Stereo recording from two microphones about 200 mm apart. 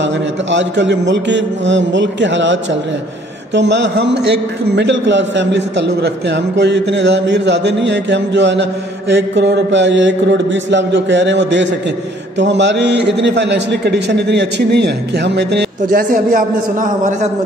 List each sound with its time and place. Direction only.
0.0 s a man's voice: 65° right (ahead or behind); by 16.4 s 45° right (ahead or behind)